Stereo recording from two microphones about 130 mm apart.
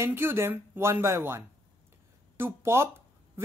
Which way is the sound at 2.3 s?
15° right (ahead or behind).